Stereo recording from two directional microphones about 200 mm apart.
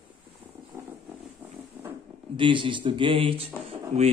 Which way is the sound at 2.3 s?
25° right (ahead or behind).